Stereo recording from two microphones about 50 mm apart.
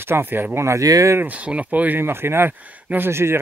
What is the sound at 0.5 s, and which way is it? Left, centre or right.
Speech, right.